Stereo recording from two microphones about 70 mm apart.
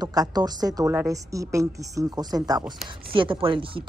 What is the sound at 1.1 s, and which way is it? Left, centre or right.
Speech, right.